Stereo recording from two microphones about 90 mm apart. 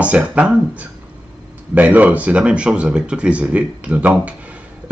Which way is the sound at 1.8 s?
15° right (ahead or behind).